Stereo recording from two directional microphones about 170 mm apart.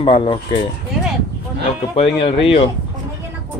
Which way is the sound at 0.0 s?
30° left (ahead or behind).